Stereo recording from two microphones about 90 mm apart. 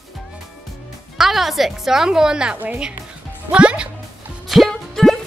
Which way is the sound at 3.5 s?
10° right (ahead or behind).